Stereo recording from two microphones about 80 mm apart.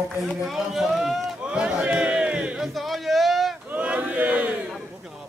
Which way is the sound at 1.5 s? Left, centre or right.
Centre.